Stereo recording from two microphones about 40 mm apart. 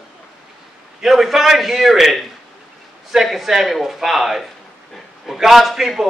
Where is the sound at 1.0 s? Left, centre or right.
Centre.